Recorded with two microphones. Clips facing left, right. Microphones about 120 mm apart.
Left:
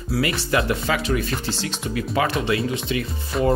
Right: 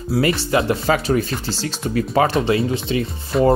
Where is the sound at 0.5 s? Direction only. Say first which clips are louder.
Right 2 dB; 35° right (ahead or behind).